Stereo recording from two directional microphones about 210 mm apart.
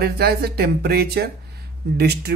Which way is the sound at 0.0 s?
50° right (ahead or behind).